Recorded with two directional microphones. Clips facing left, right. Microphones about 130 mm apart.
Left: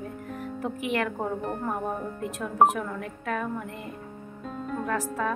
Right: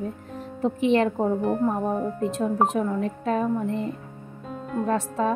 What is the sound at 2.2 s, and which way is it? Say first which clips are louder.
A woman's voice: left 3 dB; 30° right (ahead or behind).